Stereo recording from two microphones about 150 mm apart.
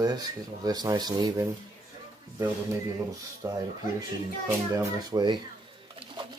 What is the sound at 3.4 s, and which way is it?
A child's voice, 20° right (ahead or behind).